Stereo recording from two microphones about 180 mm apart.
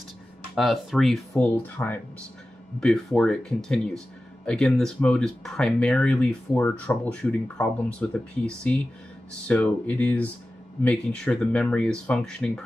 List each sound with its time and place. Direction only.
0.6 s speech: centre (ahead or behind)